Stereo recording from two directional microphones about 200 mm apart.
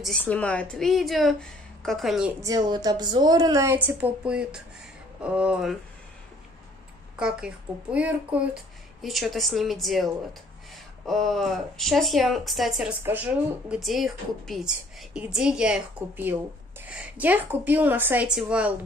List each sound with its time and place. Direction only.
0.0 s speech: 5° left (ahead or behind)
2.4 s a woman's voice: 20° right (ahead or behind); by 5.8 s 5° right (ahead or behind)
7.2 s a woman's voice: 5° right (ahead or behind)